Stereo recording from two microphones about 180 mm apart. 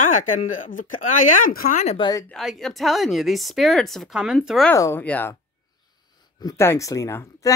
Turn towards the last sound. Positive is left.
turn(degrees=15)  # may be behind; listen again after turning